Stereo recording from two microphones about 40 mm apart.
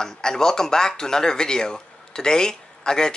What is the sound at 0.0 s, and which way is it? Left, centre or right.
Speech, centre.